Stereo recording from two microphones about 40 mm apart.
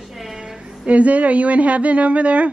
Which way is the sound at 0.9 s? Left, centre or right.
Right.